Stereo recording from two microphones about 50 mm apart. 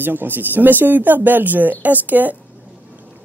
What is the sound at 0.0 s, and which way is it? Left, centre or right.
Speech, right.